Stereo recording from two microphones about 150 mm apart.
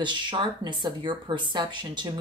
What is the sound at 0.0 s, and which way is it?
Speech, 30° right (ahead or behind).